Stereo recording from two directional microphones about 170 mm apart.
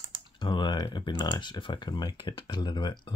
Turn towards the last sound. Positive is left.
turn(degrees=25)  # may be behind; listen again after turning